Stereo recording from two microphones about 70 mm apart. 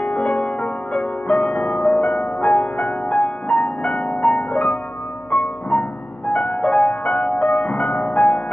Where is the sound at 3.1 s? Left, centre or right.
Centre.